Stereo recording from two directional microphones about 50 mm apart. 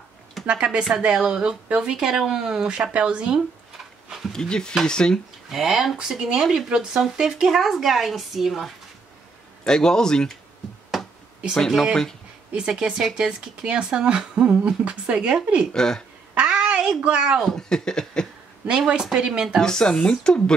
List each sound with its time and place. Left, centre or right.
0.7 s speech: centre
4.3 s speech: centre
5.5 s speech: centre
9.7 s speech: centre
10.9 s a sound: centre
11.5 s speech: centre
12.5 s speech: centre
15.7 s speech: centre
16.4 s a sound: centre
17.0 s speech: centre
17.4 s speech: centre
17.6 s speech: centre
19.1 s speech: centre
19.6 s speech: centre